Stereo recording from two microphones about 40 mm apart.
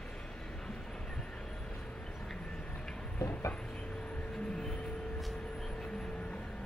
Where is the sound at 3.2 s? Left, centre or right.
Left.